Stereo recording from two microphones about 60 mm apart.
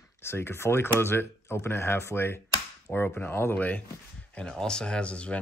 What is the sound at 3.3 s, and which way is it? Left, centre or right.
Speech, left.